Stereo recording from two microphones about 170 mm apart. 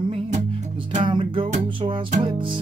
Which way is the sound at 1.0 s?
30° right (ahead or behind).